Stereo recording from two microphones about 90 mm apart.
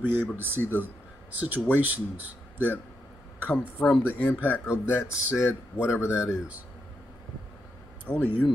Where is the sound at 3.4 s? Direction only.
15° left (ahead or behind).